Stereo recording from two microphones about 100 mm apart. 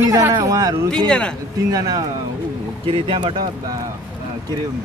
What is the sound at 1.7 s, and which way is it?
Speech, 35° right (ahead or behind).